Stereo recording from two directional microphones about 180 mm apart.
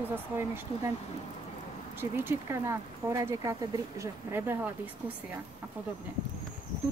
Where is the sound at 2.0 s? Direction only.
10° right (ahead or behind).